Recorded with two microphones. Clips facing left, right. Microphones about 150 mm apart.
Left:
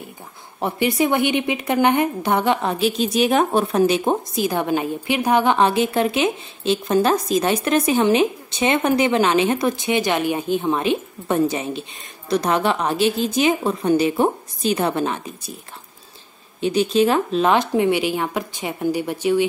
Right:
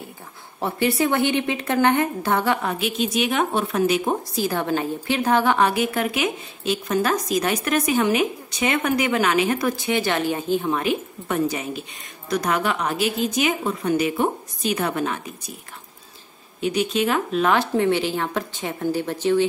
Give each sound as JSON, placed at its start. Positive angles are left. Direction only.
{"t": 0.6, "sound": "a woman's voice", "side_deg": 15}
{"t": 16.6, "sound": "speech", "side_deg": 30}